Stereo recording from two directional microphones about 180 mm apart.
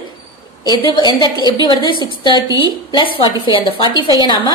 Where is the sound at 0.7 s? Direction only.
25° left (ahead or behind).